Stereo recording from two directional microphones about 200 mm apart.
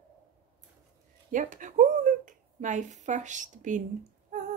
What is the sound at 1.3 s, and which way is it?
A woman's voice, 40° right (ahead or behind).